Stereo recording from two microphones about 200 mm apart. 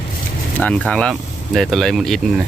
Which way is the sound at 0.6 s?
5° left (ahead or behind).